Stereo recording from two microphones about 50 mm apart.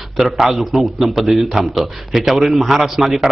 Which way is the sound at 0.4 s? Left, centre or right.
Centre.